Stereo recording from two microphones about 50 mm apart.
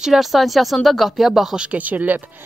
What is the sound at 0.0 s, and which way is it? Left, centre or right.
Speech, centre.